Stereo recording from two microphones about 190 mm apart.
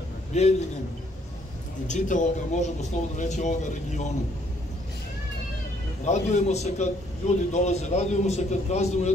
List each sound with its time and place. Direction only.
0.3 s a man's voice: 35° left (ahead or behind)
1.9 s speech: 40° left (ahead or behind)
6.0 s speech: 35° left (ahead or behind)